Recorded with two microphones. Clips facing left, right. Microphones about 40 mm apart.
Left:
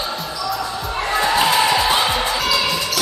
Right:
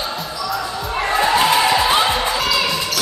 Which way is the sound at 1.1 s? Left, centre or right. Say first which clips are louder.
Right 2 dB; centre.